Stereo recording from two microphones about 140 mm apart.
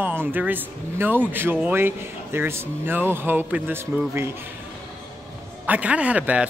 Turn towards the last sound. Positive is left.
turn(degrees=-10)  # may be behind; listen again after turning